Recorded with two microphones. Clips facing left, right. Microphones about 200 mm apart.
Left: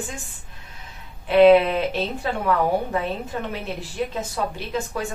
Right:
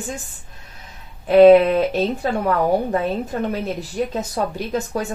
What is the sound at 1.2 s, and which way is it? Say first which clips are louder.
Speech: right 4 dB; 40° right (ahead or behind).